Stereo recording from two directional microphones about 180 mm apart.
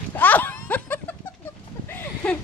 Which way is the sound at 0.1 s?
10° left (ahead or behind).